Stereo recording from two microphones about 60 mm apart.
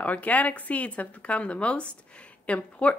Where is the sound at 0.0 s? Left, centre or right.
Left.